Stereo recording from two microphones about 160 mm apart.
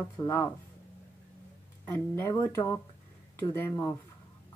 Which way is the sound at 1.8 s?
15° left (ahead or behind).